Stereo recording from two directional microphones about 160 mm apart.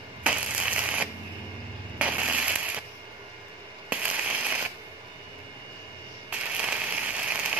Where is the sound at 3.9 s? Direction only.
10° right (ahead or behind).